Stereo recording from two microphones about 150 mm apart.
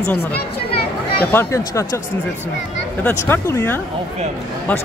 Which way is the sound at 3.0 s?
15° left (ahead or behind).